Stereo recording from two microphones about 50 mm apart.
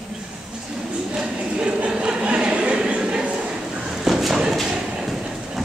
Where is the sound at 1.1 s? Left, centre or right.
Right.